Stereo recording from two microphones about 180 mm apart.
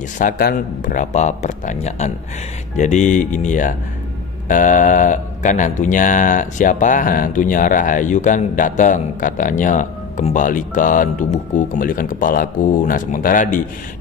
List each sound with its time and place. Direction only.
0.2 s speech: 50° left (ahead or behind)